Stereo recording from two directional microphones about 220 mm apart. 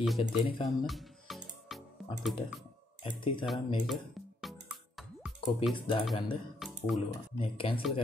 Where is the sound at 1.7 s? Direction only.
Centre (ahead or behind).